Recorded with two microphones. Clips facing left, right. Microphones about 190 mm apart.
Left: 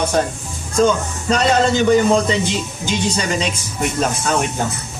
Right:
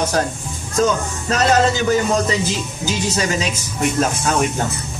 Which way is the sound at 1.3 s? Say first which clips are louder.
Left 1 dB; 5° right (ahead or behind).